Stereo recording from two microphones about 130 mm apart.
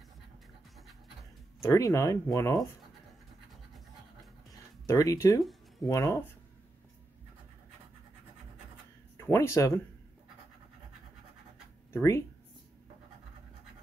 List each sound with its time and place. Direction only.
1.6 s speech: 25° left (ahead or behind)
4.8 s speech: 25° left (ahead or behind)
9.1 s speech: 20° left (ahead or behind)
11.9 s speech: 20° left (ahead or behind)